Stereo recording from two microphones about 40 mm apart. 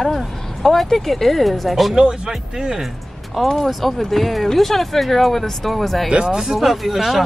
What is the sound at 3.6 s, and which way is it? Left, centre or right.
Speech, centre.